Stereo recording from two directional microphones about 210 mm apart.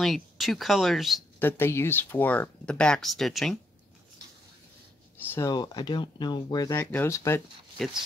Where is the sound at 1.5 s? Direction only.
10° left (ahead or behind).